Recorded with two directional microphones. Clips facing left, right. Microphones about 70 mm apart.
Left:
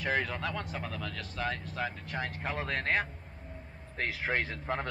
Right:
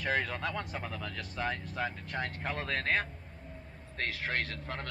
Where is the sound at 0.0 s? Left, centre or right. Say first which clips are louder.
Left 1 dB; centre.